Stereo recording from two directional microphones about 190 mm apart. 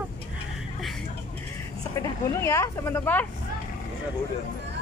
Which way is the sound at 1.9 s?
15° left (ahead or behind).